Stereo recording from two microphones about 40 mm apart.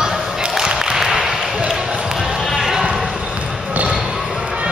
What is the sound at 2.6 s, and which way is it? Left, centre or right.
Basketball bounce, centre.